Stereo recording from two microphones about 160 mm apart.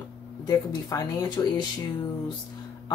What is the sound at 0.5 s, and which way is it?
Speech, 25° left (ahead or behind).